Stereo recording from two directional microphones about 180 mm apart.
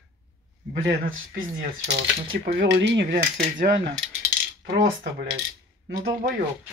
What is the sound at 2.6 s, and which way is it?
Speech, 75° right (ahead or behind).